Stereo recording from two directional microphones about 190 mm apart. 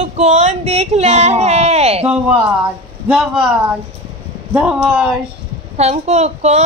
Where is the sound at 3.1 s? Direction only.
Centre (ahead or behind).